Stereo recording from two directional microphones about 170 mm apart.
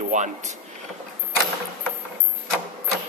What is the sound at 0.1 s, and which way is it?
Speech, 45° right (ahead or behind).